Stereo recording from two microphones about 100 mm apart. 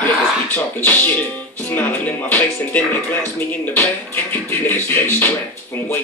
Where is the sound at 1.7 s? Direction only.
20° left (ahead or behind).